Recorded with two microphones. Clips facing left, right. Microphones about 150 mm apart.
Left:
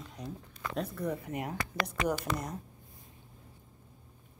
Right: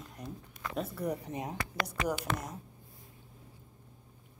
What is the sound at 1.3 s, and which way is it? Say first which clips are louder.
Speech: left 1 dB; 20° right (ahead or behind).